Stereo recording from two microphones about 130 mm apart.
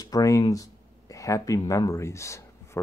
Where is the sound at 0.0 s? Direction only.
25° left (ahead or behind).